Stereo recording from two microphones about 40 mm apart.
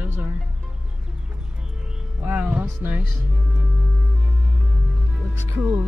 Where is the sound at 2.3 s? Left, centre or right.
Right.